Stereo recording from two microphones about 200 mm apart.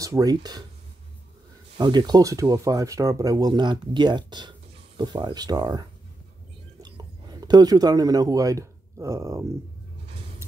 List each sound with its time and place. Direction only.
0.0 s speech: 15° right (ahead or behind)
1.8 s speech: 20° right (ahead or behind)